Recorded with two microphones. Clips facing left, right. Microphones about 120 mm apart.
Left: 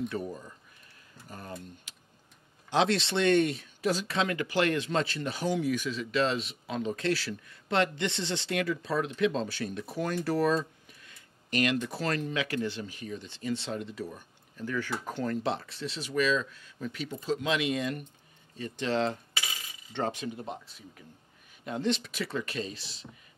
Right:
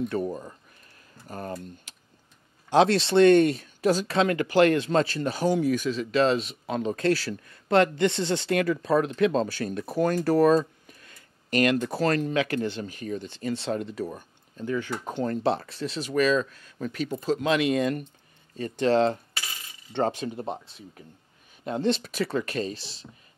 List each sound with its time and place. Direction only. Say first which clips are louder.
0.2 s speech: right 7 dB; 45° right (ahead or behind)
2.7 s speech: right 7 dB; 40° right (ahead or behind)
14.6 s speech: right 4 dB; 25° right (ahead or behind)
15.4 s speech: right 6 dB; 45° right (ahead or behind)